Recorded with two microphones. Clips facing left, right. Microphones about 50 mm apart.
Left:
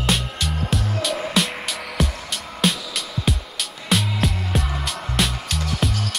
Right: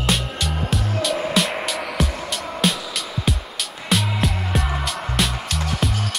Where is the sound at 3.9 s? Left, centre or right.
Centre.